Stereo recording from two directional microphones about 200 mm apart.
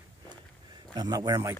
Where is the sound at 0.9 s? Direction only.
20° right (ahead or behind).